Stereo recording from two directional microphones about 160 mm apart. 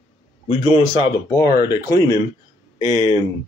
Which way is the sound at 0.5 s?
30° left (ahead or behind).